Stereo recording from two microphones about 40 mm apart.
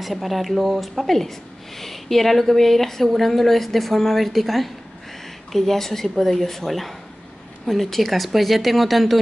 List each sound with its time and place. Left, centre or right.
0.0 s a woman's voice: centre